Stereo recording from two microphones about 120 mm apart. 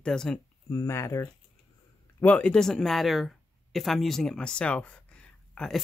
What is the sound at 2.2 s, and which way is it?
Speech, 10° left (ahead or behind).